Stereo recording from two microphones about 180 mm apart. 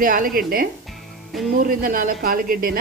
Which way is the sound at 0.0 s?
50° right (ahead or behind).